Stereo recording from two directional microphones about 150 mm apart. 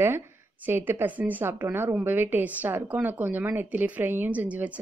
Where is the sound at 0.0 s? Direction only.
15° right (ahead or behind).